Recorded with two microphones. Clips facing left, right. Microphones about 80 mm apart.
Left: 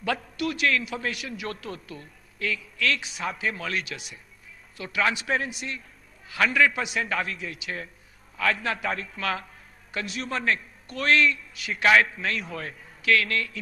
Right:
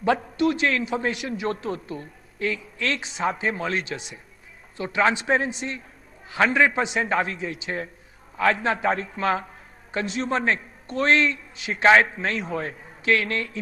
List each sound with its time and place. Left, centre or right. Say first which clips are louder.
0.0 s a woman's voice: right 7 dB; right